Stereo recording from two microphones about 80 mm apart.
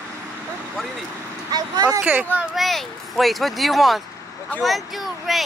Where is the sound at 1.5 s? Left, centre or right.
Right.